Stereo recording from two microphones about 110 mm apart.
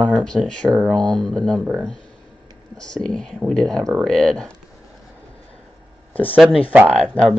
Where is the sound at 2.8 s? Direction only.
5° left (ahead or behind).